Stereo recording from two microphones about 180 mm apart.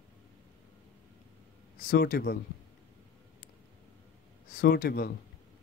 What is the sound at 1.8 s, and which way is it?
Speech, 55° left (ahead or behind).